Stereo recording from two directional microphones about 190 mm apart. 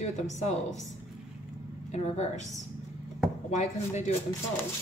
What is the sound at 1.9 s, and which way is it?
Speech, 35° left (ahead or behind).